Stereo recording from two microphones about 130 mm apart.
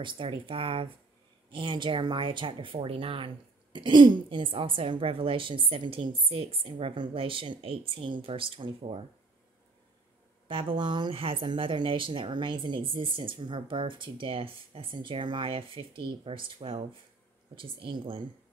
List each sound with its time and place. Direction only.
0.0 s a woman's voice: 40° right (ahead or behind)
10.5 s speech: 45° right (ahead or behind)